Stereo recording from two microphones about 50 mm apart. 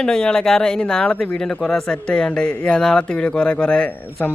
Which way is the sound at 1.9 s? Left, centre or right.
Left.